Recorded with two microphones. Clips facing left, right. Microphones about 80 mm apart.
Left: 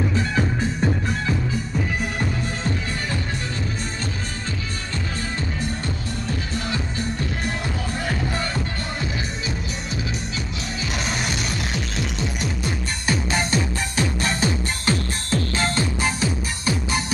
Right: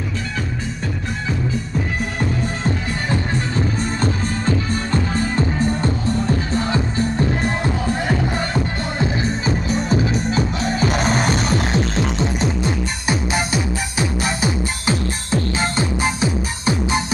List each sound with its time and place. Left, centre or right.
3.1 s music: right
9.5 s music: right